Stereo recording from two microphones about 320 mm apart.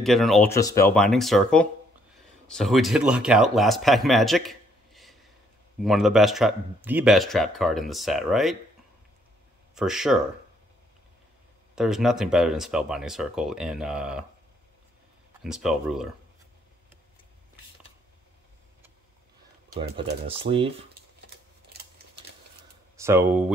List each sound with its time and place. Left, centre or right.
0.0 s a man's voice: centre
9.8 s speech: centre
11.7 s speech: centre
15.4 s speech: centre
20.0 s speech: centre
22.9 s speech: centre